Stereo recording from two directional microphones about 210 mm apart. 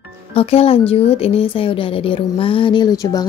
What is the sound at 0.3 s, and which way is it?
Speech, 30° left (ahead or behind).